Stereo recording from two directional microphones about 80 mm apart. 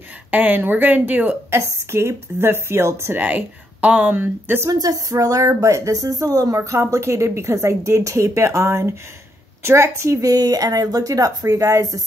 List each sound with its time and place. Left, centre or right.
0.3 s a woman's voice: right
4.6 s a woman's voice: right